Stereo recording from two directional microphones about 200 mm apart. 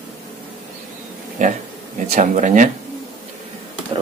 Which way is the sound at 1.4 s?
40° right (ahead or behind).